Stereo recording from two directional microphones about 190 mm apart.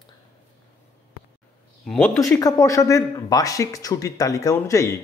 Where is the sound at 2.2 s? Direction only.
15° left (ahead or behind).